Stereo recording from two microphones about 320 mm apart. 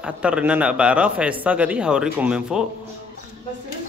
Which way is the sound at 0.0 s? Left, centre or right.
Centre.